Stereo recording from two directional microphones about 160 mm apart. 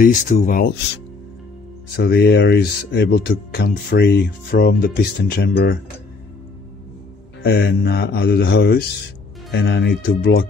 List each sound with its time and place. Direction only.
0.0 s speech: 55° left (ahead or behind)
2.0 s speech: 85° left
7.4 s mantra: 80° left
9.5 s speech: 80° left